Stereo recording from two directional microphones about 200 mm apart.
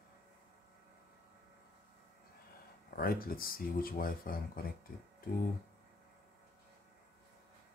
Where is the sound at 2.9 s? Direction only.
45° left (ahead or behind).